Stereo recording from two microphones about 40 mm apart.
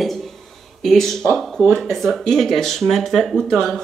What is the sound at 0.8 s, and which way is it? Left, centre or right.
Speech, centre.